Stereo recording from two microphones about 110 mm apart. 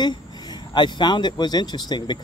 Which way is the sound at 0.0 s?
40° left (ahead or behind).